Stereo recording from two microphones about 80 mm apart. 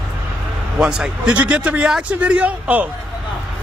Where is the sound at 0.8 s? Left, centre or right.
Centre.